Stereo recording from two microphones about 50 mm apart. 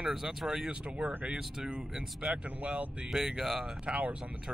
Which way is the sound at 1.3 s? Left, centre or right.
Centre.